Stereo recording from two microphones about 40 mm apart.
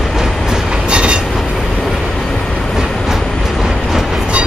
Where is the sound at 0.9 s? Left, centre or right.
Right.